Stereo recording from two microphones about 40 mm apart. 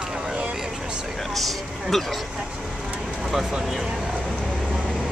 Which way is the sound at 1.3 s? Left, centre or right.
Centre.